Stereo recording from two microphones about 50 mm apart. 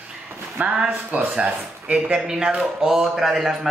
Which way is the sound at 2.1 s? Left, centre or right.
Centre.